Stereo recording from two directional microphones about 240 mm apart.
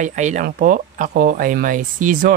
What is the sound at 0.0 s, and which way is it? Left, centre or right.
Speech, right.